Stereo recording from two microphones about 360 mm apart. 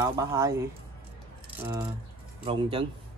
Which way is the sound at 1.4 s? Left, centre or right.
Centre.